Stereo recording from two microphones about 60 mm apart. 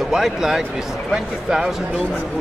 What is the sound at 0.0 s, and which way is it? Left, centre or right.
Speech, centre.